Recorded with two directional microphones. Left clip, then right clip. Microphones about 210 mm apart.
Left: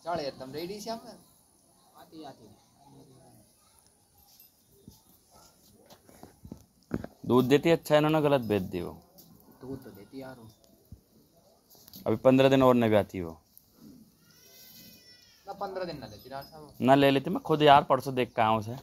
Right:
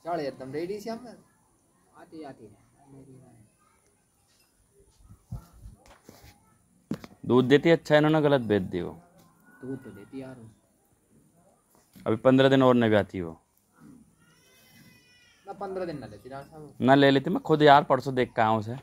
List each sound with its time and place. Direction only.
0.0 s speech: 50° right (ahead or behind)
2.0 s a sound: 45° right (ahead or behind)
7.2 s speech: 10° right (ahead or behind)
12.0 s speech: 5° right (ahead or behind)
15.4 s speech: 55° right (ahead or behind)
16.7 s speech: 10° right (ahead or behind)